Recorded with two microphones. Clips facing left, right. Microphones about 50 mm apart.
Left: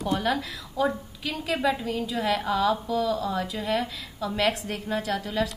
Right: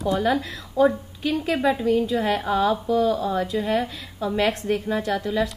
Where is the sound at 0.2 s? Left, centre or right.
Right.